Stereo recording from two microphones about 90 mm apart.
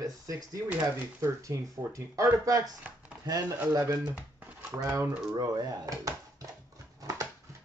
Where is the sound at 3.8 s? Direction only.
30° right (ahead or behind).